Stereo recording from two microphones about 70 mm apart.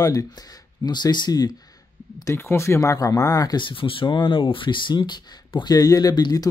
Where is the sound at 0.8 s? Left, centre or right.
Left.